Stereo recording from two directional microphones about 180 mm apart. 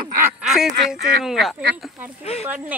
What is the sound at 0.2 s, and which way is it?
Honk, 5° right (ahead or behind).